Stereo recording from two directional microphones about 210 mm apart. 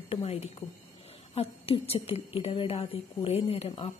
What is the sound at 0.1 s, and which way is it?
A woman's voice, 30° left (ahead or behind).